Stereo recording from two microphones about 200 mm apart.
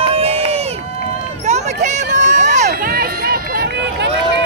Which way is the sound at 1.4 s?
35° right (ahead or behind).